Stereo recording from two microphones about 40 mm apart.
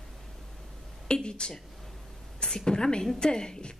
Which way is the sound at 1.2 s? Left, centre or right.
Centre.